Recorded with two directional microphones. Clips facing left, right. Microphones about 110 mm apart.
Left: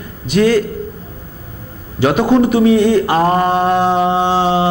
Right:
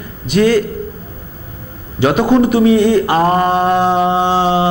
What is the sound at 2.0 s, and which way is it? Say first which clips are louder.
A man's voice: even; 20° right (ahead or behind).